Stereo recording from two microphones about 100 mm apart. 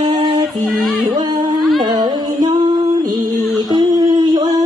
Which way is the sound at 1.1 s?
45° right (ahead or behind).